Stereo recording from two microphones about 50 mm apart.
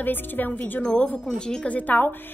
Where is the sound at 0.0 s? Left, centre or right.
Left.